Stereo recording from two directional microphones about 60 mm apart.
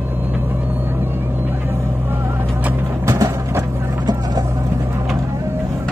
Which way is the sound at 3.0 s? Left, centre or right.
Right.